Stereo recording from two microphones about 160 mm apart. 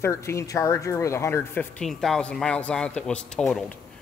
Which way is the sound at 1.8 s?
5° left (ahead or behind).